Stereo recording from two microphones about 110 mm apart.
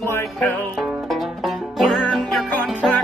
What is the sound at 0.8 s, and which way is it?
Music, centre (ahead or behind).